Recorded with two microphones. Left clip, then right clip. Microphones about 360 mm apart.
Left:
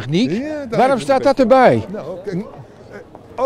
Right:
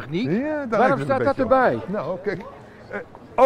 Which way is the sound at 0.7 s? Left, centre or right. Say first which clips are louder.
Left 5 dB; left.